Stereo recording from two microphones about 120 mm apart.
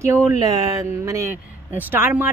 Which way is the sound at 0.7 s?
25° right (ahead or behind).